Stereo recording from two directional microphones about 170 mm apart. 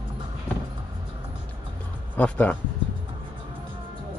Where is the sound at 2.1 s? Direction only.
10° left (ahead or behind).